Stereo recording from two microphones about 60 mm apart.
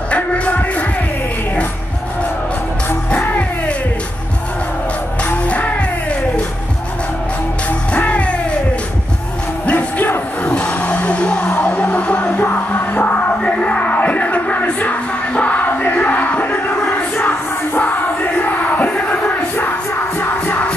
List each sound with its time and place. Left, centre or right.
0.1 s music: left
5.3 s music: left
7.9 s music: left
9.7 s a sound: left
10.5 s music: left
13.4 s music: left
16.5 s crowd: left
16.9 s music: left